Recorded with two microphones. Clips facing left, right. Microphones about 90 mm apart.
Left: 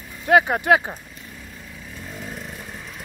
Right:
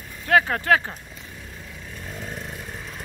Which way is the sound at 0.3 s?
15° left (ahead or behind).